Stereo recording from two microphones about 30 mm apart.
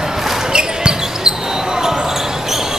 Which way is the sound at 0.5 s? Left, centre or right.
Right.